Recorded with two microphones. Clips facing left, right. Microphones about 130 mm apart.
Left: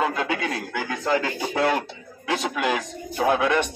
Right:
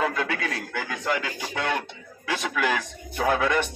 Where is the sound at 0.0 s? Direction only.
25° left (ahead or behind).